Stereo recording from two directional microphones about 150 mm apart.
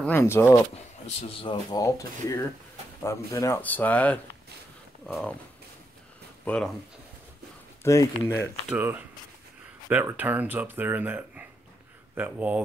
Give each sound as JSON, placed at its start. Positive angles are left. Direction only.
{"t": 0.0, "sound": "speech", "side_deg": 15}
{"t": 1.0, "sound": "speech", "side_deg": 35}
{"t": 1.8, "sound": "speech", "side_deg": 20}
{"t": 6.4, "sound": "speech", "side_deg": 5}
{"t": 7.8, "sound": "speech", "side_deg": 20}
{"t": 8.6, "sound": "speech", "side_deg": -10}